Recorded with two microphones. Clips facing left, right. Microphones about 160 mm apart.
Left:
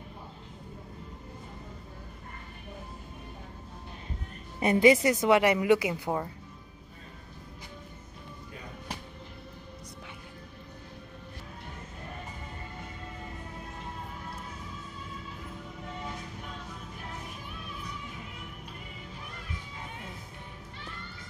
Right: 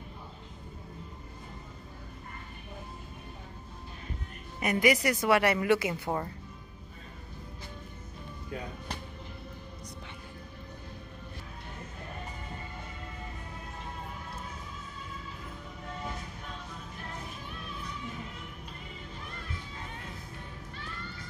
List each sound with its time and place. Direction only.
4.6 s a woman's voice: 25° left (ahead or behind)